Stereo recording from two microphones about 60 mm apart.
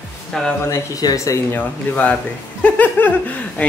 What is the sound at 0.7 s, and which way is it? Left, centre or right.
Speech, left.